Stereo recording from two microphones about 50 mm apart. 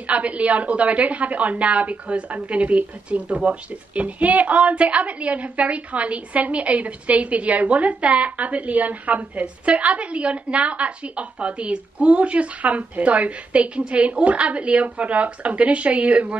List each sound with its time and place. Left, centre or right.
0.0 s a woman's voice: right